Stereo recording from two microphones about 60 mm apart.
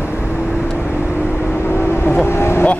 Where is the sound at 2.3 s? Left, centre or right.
Left.